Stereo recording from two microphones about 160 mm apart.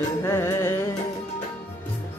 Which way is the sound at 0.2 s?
15° left (ahead or behind).